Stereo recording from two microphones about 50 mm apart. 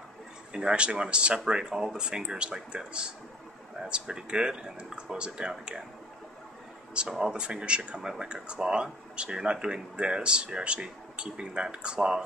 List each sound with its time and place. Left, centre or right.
0.5 s speech: centre
6.9 s speech: centre